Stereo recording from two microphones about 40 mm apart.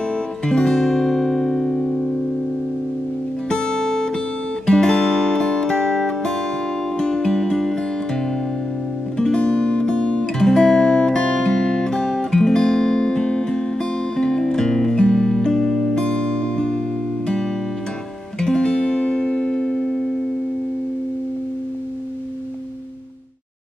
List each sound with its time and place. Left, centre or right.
0.0 s music: left
3.4 s music: centre
10.4 s music: centre
15.9 s music: left